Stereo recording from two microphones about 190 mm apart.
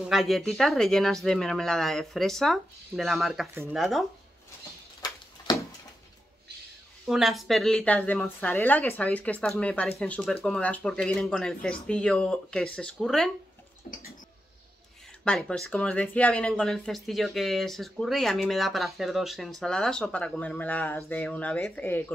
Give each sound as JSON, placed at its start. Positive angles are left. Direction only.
{"t": 0.1, "sound": "speech", "side_deg": 0}
{"t": 5.5, "sound": "a sound", "side_deg": 20}
{"t": 7.1, "sound": "speech", "side_deg": 0}
{"t": 15.2, "sound": "speech", "side_deg": 0}